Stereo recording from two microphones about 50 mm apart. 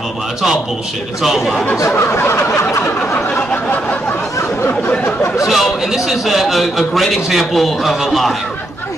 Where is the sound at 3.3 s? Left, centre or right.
Centre.